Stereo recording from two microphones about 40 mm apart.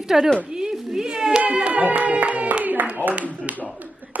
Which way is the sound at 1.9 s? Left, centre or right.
Right.